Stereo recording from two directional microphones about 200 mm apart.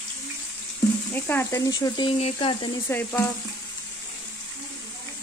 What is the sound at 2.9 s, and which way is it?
Frying, 10° left (ahead or behind).